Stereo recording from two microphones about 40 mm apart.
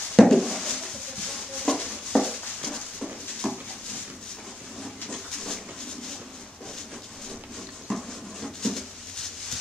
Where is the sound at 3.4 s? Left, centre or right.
Centre.